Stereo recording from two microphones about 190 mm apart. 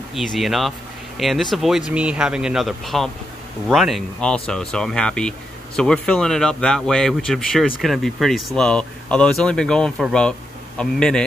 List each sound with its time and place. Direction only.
0.1 s speech: centre (ahead or behind)